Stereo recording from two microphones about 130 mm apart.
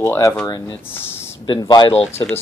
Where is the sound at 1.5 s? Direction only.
35° left (ahead or behind).